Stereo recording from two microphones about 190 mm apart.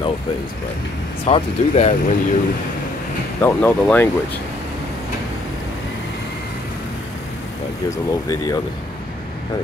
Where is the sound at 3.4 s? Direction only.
10° left (ahead or behind).